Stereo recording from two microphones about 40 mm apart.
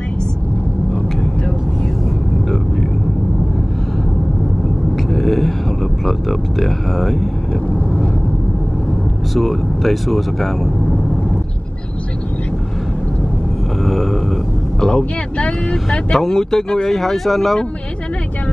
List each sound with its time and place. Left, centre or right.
4.9 s a sound: centre
6.0 s music: centre
9.3 s speech: centre
13.8 s a sound: centre
14.8 s speech: left
15.7 s speech: centre